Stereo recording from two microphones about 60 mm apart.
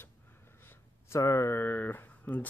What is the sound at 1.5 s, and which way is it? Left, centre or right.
Speech, left.